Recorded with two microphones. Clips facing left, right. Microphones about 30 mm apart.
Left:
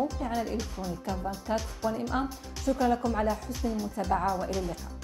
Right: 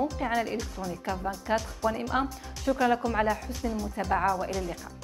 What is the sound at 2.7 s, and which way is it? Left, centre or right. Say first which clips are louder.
Speech: right 2 dB; centre.